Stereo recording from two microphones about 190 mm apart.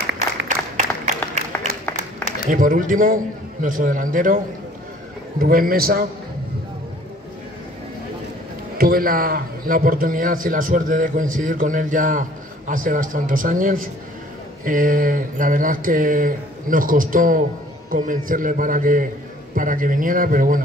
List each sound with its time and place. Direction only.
0.7 s a sound: 40° right (ahead or behind)
2.4 s a man's voice: 45° right (ahead or behind)
5.4 s a man's voice: 50° right (ahead or behind)
8.7 s a man's voice: 50° right (ahead or behind)